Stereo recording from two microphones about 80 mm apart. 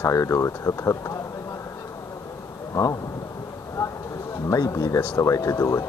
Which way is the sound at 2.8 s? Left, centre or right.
Left.